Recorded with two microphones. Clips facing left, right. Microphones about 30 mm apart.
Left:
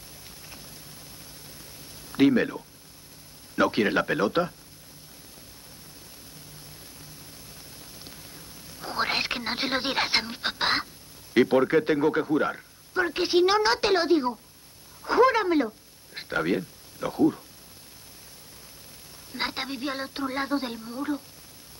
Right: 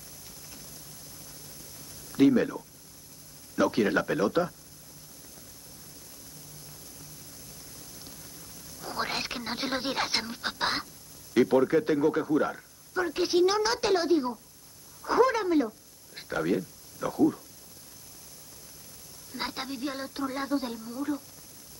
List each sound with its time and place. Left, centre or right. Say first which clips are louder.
2.0 s a sound: left 1 dB; left
3.5 s a man's voice: left 2 dB; left
7.9 s rain on surface: left 2 dB; left
11.3 s a man's voice: left 2 dB; left
15.0 s a sound: left 3 dB; left
16.2 s speech: left 2 dB; left
19.3 s a woman's voice: left 4 dB; left